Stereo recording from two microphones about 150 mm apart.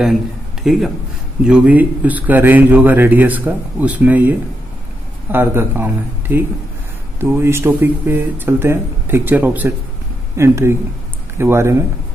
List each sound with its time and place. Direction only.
0.7 s speech: 5° right (ahead or behind)